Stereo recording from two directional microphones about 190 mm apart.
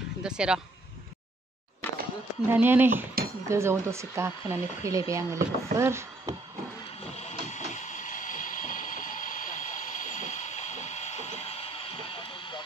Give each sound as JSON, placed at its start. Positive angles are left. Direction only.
{"t": 0.2, "sound": "speech", "side_deg": -5}
{"t": 2.4, "sound": "speech", "side_deg": -10}
{"t": 7.2, "sound": "a sound", "side_deg": 35}
{"t": 12.1, "sound": "vehicle", "side_deg": 25}